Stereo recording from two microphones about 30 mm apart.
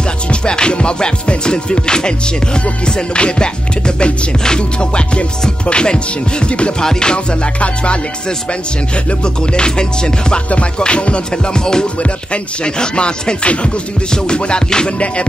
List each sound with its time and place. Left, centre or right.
0.3 s music: left
6.8 s music: left
7.6 s music: left
11.5 s music: left
12.0 s music: left